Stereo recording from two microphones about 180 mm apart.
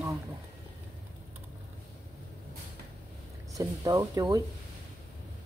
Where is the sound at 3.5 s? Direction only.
20° right (ahead or behind).